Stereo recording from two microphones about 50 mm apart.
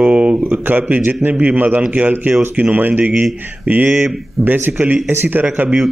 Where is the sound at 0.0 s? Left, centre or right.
Right.